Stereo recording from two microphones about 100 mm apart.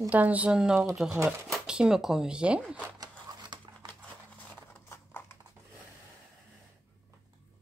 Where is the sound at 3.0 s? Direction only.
45° right (ahead or behind).